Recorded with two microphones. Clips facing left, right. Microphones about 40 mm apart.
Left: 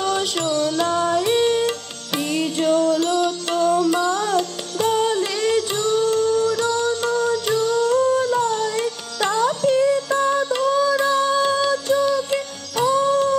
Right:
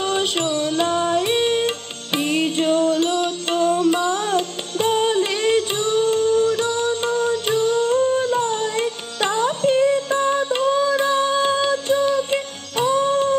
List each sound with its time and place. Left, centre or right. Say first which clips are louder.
0.1 s music: right 1 dB; right